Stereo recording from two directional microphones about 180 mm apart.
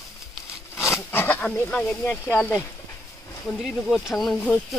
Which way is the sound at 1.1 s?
10° left (ahead or behind).